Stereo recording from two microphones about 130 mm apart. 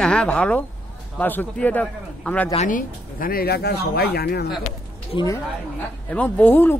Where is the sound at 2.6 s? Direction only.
90° left.